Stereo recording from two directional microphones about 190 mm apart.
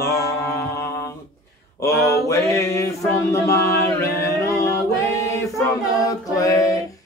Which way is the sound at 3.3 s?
15° left (ahead or behind).